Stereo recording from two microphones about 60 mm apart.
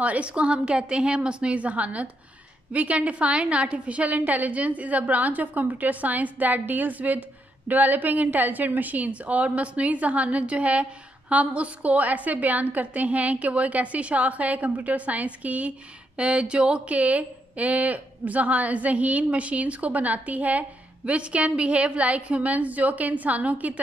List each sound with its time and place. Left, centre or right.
0.0 s speech: right